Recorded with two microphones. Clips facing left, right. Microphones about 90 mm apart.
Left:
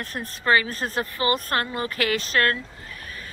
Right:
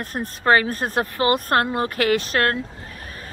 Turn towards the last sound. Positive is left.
turn(degrees=-50)  # may be behind; listen again after turning